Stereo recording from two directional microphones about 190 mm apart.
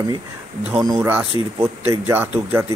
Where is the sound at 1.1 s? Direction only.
10° right (ahead or behind).